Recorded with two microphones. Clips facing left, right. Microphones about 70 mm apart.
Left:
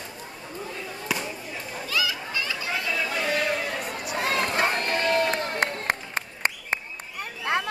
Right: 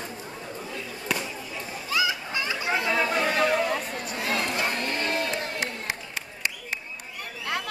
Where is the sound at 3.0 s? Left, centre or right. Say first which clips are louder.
Right 2 dB; right.